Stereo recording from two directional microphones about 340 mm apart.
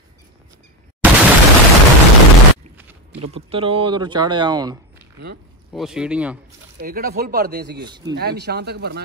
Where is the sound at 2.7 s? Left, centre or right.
Centre.